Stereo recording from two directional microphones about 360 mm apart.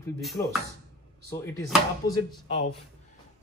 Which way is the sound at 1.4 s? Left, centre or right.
Centre.